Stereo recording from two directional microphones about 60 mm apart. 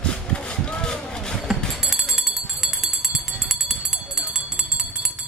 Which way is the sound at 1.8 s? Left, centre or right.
Centre.